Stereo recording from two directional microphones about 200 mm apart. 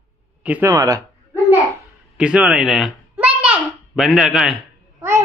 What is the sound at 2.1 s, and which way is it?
Speech, 5° right (ahead or behind).